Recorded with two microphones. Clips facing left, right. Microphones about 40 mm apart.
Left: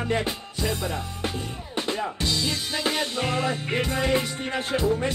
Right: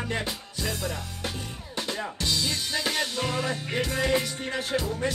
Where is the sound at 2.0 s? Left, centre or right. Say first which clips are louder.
Left 2 dB; centre.